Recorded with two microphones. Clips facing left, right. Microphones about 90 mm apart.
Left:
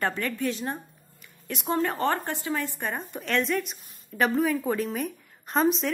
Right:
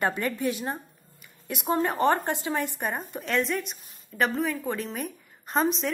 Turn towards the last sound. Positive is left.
turn(degrees=0)  # may be behind; listen again after turning